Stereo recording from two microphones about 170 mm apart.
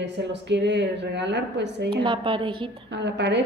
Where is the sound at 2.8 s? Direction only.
90° right.